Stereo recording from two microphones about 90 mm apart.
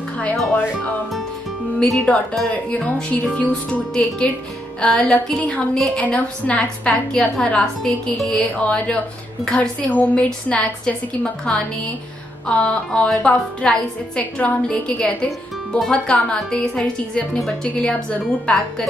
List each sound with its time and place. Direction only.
1.8 s speech: 5° left (ahead or behind)
2.4 s a woman's voice: 15° left (ahead or behind)